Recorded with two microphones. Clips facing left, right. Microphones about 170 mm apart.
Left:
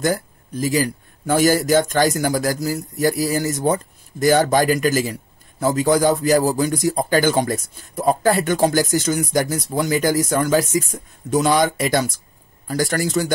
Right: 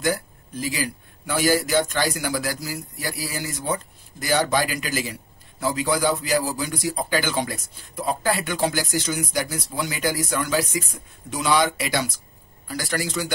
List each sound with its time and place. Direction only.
0.0 s a man's voice: 45° left (ahead or behind)